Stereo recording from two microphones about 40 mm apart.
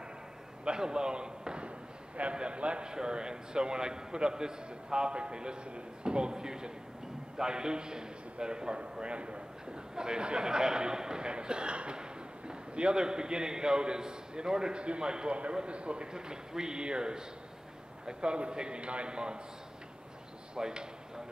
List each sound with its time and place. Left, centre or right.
0.7 s a man's voice: centre
20.5 s speech: centre